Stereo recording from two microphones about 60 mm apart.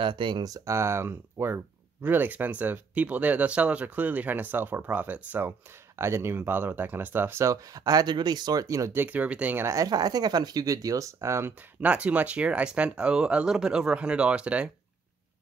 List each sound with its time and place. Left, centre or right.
0.4 s speech: right
0.7 s speech: right
2.0 s speech: right
5.9 s speech: right
7.4 s speech: right
8.5 s speech: right
8.9 s speech: right
9.7 s speech: right
11.8 s speech: right